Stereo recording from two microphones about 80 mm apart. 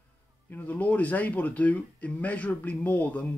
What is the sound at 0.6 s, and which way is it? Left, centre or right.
Speech, centre.